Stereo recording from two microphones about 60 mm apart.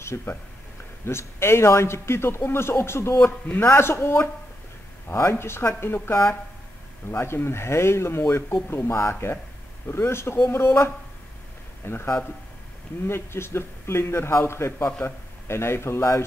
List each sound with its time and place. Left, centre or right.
0.0 s a man's voice: left
3.6 s a man's voice: left